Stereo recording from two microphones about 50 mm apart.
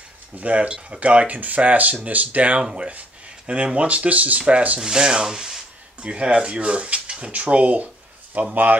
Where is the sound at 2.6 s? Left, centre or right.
Right.